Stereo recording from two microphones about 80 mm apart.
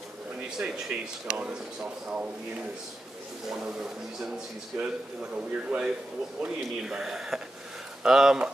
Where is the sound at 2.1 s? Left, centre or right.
Centre.